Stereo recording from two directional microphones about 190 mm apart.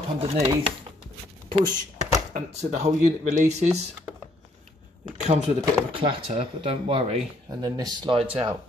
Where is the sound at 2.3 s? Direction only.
40° right (ahead or behind).